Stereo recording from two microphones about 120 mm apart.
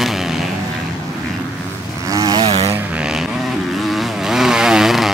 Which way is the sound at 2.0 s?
30° right (ahead or behind).